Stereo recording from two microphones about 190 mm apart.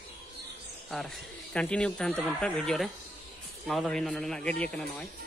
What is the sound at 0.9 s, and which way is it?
Speech, centre (ahead or behind).